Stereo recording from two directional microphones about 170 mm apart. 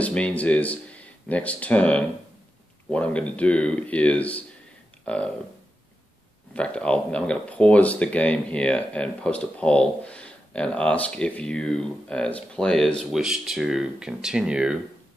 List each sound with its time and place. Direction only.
0.0 s speech: 5° left (ahead or behind)
6.5 s speech: 5° left (ahead or behind)